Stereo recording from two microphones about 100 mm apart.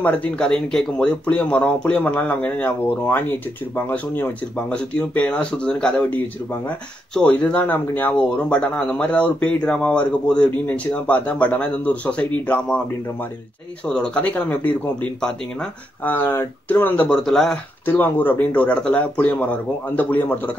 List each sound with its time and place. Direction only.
0.0 s speech: 10° left (ahead or behind)
13.8 s speech: 10° left (ahead or behind)
16.0 s speech: 20° left (ahead or behind)
17.3 s speech: 5° left (ahead or behind)
17.8 s speech: 20° left (ahead or behind)